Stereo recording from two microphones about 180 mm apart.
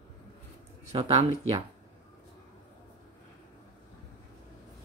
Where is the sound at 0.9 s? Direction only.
35° right (ahead or behind).